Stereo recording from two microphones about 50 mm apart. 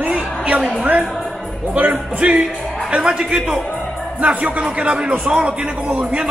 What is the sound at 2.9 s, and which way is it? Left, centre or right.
Speech, centre.